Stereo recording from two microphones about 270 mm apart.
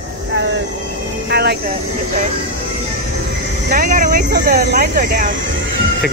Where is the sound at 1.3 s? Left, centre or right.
Right.